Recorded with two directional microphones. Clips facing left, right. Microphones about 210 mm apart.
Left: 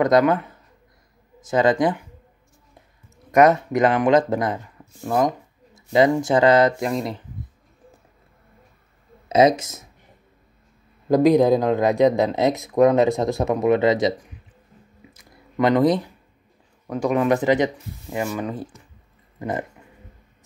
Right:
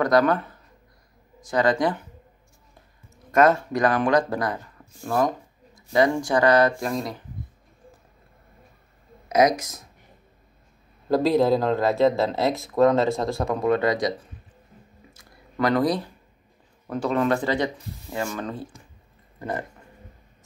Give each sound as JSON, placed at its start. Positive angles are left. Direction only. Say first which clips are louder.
{"t": 0.0, "sound": "speech", "louder": "left 3 dB", "side_deg": 20}
{"t": 3.3, "sound": "speech", "louder": "left 3 dB", "side_deg": 20}
{"t": 9.3, "sound": "speech", "louder": "left 3 dB", "side_deg": 25}
{"t": 11.1, "sound": "speech", "louder": "left 4 dB", "side_deg": 15}
{"t": 15.1, "sound": "a sound", "louder": "left 4 dB", "side_deg": 20}
{"t": 16.8, "sound": "speech", "louder": "left 3 dB", "side_deg": 10}